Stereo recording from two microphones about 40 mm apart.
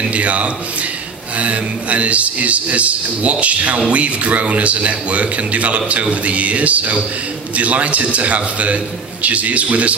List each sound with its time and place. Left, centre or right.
0.1 s a man's voice: right